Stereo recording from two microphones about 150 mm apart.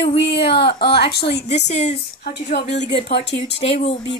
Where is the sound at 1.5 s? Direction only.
50° left (ahead or behind).